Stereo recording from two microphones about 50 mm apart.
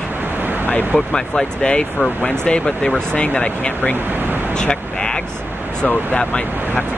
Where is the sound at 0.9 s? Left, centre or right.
Centre.